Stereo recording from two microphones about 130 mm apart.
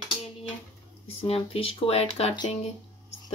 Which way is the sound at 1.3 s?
45° left (ahead or behind).